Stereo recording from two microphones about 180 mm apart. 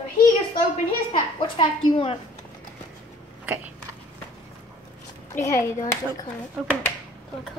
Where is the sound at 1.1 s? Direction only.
25° left (ahead or behind).